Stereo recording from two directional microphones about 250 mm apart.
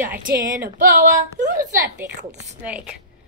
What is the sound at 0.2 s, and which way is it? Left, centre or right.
Speech, right.